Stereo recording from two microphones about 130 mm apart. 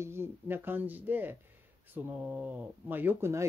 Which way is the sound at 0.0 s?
20° right (ahead or behind).